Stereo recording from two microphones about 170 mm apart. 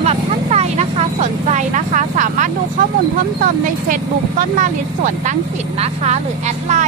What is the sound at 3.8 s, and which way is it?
Speech, 55° right (ahead or behind).